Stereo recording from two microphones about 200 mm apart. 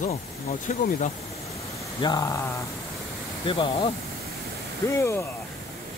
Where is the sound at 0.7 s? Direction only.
40° left (ahead or behind).